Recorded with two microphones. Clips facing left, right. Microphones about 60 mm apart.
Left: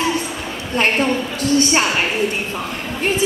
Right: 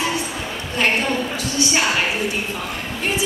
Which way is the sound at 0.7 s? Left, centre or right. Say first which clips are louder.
Left 3 dB; left.